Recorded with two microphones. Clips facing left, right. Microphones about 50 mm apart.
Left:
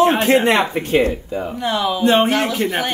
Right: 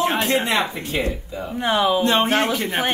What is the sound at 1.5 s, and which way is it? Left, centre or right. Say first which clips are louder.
Speech: right 2 dB; right.